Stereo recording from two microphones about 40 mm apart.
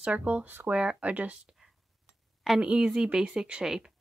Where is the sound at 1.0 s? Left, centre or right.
Right.